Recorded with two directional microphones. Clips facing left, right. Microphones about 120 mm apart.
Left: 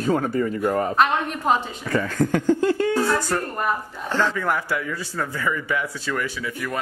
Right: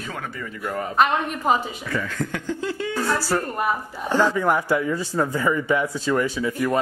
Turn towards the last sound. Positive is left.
turn(degrees=-30)  # may be behind; listen again after turning